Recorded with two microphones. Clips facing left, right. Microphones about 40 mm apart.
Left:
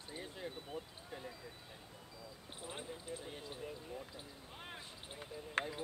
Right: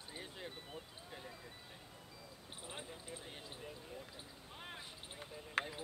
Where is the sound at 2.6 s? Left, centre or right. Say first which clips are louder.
Left 3 dB; centre.